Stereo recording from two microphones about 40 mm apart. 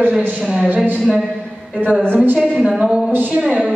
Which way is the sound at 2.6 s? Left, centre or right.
Centre.